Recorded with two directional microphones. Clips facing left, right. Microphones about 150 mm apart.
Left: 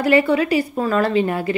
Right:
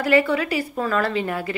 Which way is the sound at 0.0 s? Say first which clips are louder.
Left 3 dB; 25° left (ahead or behind).